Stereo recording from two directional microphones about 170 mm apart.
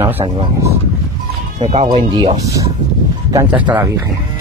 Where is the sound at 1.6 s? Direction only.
35° right (ahead or behind).